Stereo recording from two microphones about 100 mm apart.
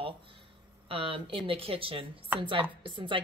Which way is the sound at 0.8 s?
65° right (ahead or behind).